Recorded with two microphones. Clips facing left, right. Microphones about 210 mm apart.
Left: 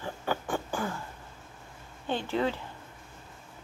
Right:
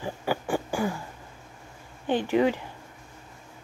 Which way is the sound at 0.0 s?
10° right (ahead or behind).